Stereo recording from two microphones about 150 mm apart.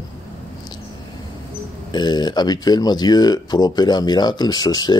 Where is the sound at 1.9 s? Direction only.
30° left (ahead or behind).